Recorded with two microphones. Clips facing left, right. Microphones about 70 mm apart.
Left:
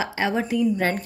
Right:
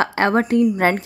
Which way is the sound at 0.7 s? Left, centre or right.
Right.